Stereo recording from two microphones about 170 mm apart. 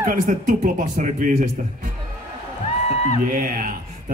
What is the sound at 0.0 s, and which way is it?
Speech, 55° right (ahead or behind).